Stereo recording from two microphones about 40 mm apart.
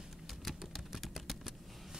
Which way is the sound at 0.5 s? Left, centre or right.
Centre.